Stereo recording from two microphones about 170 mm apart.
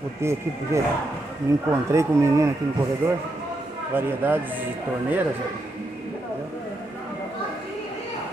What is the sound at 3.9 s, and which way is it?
Speech, 10° right (ahead or behind).